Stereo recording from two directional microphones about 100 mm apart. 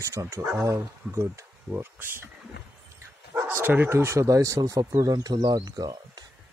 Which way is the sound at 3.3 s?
25° right (ahead or behind).